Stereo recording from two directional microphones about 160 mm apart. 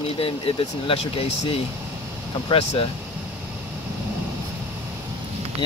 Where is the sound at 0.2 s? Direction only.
35° left (ahead or behind).